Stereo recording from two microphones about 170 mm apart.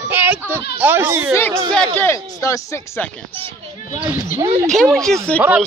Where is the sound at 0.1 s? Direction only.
10° right (ahead or behind).